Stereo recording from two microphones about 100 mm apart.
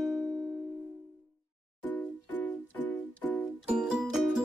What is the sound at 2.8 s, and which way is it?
Music, 15° left (ahead or behind).